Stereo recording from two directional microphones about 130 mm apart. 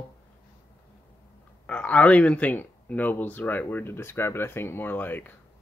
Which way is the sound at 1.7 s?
10° left (ahead or behind).